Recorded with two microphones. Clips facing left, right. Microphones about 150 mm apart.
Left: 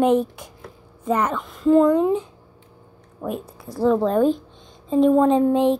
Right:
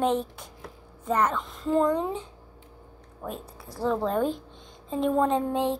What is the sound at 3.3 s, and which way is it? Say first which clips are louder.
Speech: left 8 dB; 15° left (ahead or behind).